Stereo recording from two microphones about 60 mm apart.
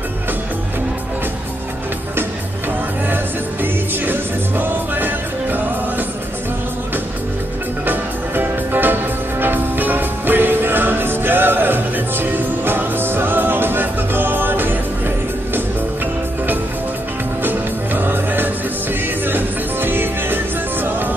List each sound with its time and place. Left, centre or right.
3.6 s music: right
7.8 s music: right
17.4 s music: right